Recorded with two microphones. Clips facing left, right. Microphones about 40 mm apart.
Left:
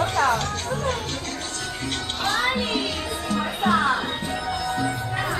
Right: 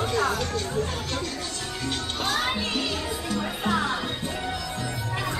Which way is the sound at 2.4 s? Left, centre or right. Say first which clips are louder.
Left 4 dB; centre.